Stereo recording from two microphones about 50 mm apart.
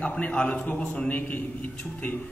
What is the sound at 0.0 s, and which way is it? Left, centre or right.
A man's voice, left.